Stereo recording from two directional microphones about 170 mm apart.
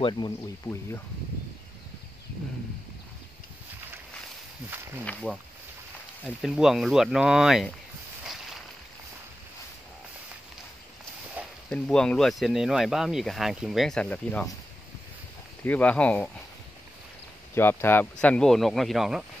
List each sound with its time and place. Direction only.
0.7 s speech: 15° left (ahead or behind)
5.0 s speech: 5° left (ahead or behind)
11.4 s a sound: 10° right (ahead or behind)
11.7 s speech: 5° left (ahead or behind)
15.6 s speech: 10° left (ahead or behind)
17.6 s speech: 15° left (ahead or behind)